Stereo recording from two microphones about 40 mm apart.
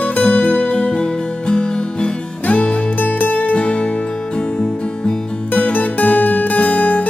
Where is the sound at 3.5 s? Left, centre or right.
Left.